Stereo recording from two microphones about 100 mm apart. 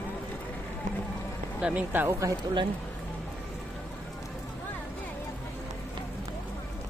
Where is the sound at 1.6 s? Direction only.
10° right (ahead or behind).